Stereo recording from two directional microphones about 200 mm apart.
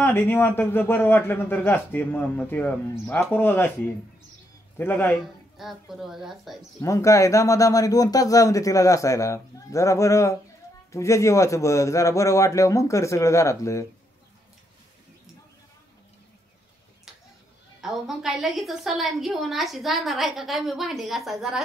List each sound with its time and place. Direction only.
0.0 s a man's voice: 10° left (ahead or behind)
6.8 s a man's voice: 15° left (ahead or behind)
17.7 s a woman's voice: centre (ahead or behind)